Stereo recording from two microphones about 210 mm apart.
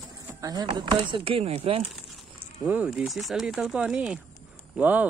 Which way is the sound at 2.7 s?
5° right (ahead or behind).